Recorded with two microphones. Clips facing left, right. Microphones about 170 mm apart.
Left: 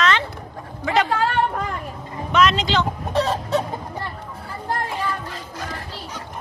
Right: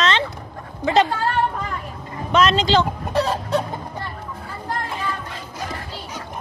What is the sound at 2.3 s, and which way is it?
Speech, 30° right (ahead or behind).